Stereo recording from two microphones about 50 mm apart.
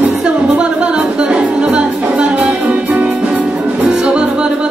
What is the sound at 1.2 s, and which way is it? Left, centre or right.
Music, right.